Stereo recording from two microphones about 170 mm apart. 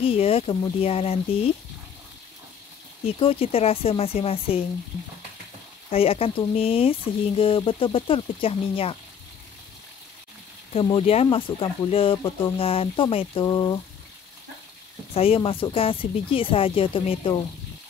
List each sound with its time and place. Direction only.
0.0 s speech: 35° left (ahead or behind)
3.1 s speech: 35° left (ahead or behind)
5.9 s speech: 35° left (ahead or behind)
10.7 s speech: 30° left (ahead or behind)
15.1 s speech: 35° left (ahead or behind)